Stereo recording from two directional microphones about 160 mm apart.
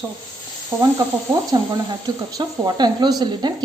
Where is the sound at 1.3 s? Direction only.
25° right (ahead or behind).